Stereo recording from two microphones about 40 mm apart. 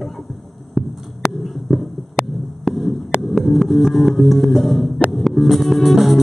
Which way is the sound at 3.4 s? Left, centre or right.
Centre.